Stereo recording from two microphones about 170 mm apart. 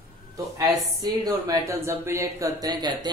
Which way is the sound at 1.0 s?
20° right (ahead or behind).